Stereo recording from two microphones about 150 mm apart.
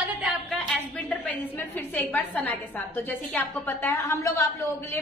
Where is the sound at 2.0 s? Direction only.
10° left (ahead or behind).